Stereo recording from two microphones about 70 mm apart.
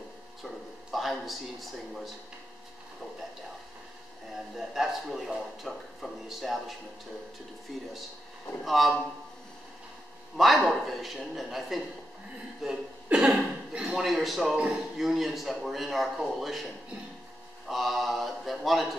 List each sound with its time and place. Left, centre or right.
0.9 s speech: centre
4.6 s speech: centre
7.7 s speech: centre
10.3 s speech: centre
12.6 s chuckle: centre
13.3 s a man's voice: centre